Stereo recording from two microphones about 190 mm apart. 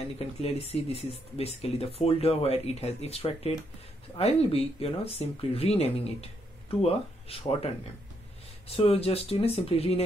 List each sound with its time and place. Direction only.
0.4 s speech: 30° left (ahead or behind)